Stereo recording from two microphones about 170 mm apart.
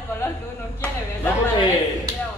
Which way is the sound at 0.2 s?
15° left (ahead or behind).